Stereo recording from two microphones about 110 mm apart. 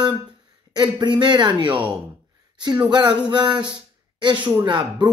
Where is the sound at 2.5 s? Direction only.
40° right (ahead or behind).